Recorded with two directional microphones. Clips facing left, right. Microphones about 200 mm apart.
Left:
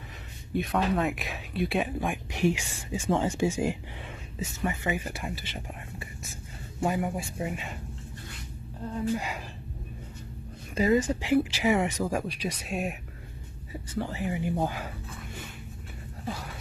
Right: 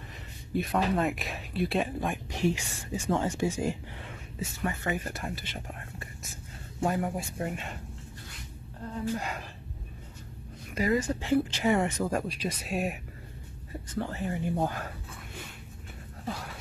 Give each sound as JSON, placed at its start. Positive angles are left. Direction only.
{"t": 0.5, "sound": "speech", "side_deg": 0}
{"t": 2.3, "sound": "speech", "side_deg": 15}
{"t": 4.8, "sound": "speech", "side_deg": 5}
{"t": 9.1, "sound": "speech", "side_deg": 5}
{"t": 10.7, "sound": "speech", "side_deg": 25}
{"t": 16.3, "sound": "a sound", "side_deg": 0}